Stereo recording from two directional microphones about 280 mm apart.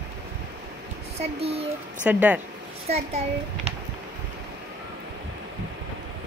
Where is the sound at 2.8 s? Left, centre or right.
Right.